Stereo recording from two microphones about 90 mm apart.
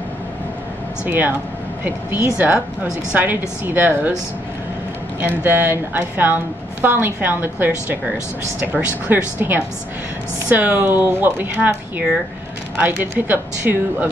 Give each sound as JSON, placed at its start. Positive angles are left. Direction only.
{"t": 1.0, "sound": "a woman's voice", "side_deg": -20}
{"t": 5.2, "sound": "a woman's voice", "side_deg": -20}
{"t": 9.0, "sound": "a woman's voice", "side_deg": -20}
{"t": 12.7, "sound": "a woman's voice", "side_deg": -20}